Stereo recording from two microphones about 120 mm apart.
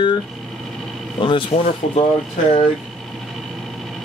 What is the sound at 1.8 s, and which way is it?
Speech, 70° left (ahead or behind).